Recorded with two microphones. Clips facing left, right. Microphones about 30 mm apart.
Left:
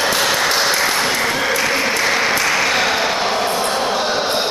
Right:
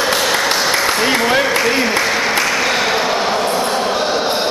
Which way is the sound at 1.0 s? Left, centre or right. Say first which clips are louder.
Right 3 dB; centre.